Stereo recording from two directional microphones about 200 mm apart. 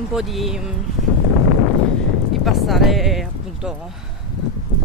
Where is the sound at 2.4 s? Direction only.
Centre (ahead or behind).